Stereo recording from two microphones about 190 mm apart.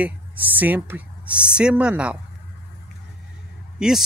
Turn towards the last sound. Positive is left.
turn(degrees=0)  # may be behind; listen again after turning